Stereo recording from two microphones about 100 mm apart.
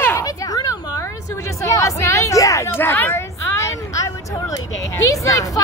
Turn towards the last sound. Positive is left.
turn(degrees=35)  # may be behind; listen again after turning